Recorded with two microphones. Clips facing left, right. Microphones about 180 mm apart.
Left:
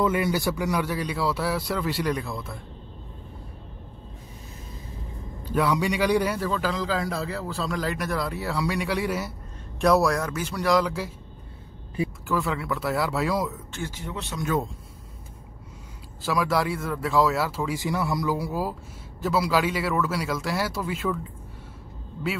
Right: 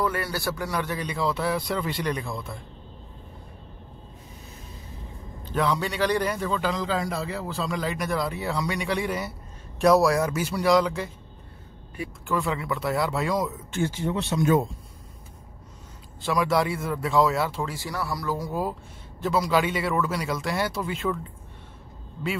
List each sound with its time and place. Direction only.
0.0 s a man's voice: 20° left (ahead or behind); by 2.6 s 5° left (ahead or behind)
5.4 s a man's voice: 10° left (ahead or behind)
12.3 s a man's voice: centre (ahead or behind)
13.7 s speech: 25° right (ahead or behind)
16.2 s a man's voice: 5° left (ahead or behind)
17.7 s a man's voice: 20° left (ahead or behind); by 21.2 s 5° left (ahead or behind)